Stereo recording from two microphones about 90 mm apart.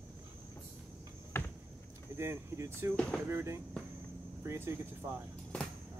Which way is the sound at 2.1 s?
30° right (ahead or behind).